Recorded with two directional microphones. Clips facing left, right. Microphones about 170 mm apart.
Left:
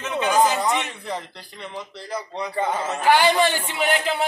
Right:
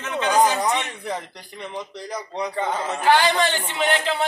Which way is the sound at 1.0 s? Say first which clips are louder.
Right 1 dB; 15° right (ahead or behind).